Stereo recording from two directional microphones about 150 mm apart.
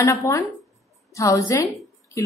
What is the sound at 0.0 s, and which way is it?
A woman's voice, 20° left (ahead or behind).